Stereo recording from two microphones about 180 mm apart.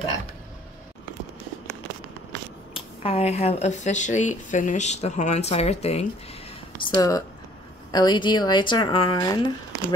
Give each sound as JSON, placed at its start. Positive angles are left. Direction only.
{"t": 2.7, "sound": "speech", "side_deg": 30}
{"t": 6.8, "sound": "speech", "side_deg": 20}